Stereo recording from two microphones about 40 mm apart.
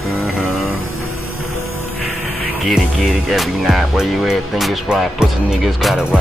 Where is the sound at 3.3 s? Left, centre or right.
Centre.